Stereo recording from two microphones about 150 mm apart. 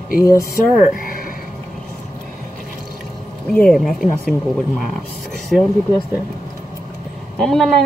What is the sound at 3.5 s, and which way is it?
Speech, 10° left (ahead or behind).